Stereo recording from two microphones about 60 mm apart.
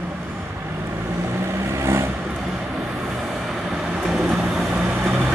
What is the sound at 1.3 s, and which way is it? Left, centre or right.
Vehicle, right.